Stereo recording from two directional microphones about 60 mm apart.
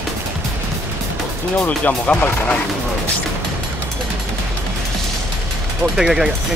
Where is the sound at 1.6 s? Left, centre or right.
Left.